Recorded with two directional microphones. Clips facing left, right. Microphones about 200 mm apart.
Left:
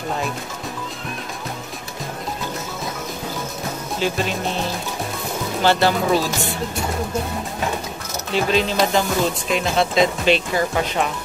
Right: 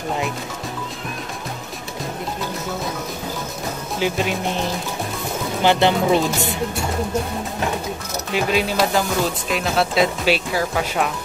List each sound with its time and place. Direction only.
4.0 s speech: 15° right (ahead or behind)
5.6 s speech: 20° right (ahead or behind)
8.3 s speech: 10° right (ahead or behind)